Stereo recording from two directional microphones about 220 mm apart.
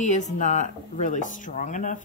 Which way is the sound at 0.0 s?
35° left (ahead or behind).